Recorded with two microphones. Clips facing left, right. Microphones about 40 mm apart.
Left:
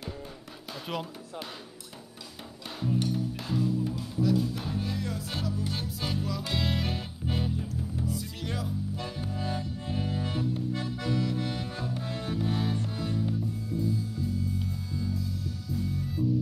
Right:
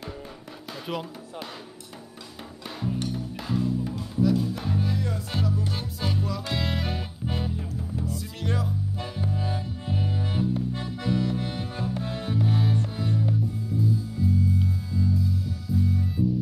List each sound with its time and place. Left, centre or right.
0.9 s speech: centre
2.8 s music: centre
10.7 s music: right
12.3 s music: centre